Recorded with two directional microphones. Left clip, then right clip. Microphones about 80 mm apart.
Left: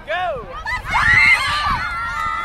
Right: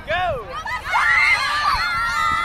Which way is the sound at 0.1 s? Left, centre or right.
Centre.